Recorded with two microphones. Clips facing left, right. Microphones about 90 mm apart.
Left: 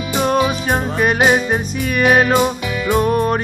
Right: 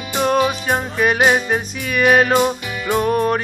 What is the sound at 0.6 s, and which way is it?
Music, 35° left (ahead or behind).